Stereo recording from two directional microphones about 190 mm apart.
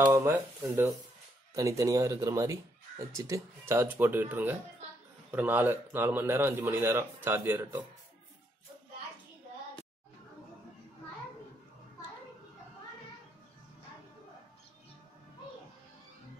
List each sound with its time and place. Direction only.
0.0 s speech: 15° right (ahead or behind)